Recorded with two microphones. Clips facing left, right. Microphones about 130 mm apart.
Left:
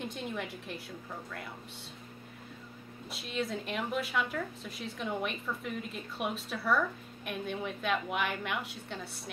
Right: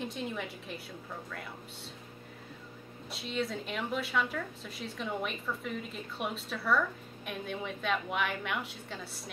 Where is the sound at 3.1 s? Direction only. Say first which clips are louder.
Right 1 dB; centre (ahead or behind).